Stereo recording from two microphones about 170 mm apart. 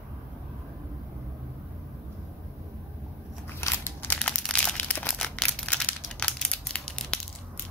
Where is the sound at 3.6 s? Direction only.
15° left (ahead or behind).